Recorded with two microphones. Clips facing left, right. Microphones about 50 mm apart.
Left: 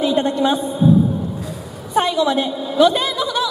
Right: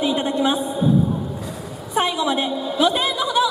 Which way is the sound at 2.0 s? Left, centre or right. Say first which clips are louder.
Left 4 dB; centre.